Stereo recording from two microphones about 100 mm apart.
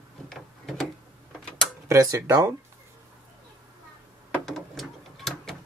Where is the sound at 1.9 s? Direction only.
35° right (ahead or behind).